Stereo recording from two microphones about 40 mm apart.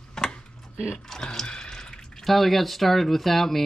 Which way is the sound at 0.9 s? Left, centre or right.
Centre.